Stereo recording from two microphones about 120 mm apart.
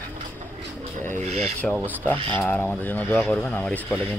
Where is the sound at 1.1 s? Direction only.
65° right (ahead or behind).